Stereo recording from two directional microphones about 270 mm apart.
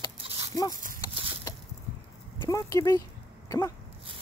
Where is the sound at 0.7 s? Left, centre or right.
Right.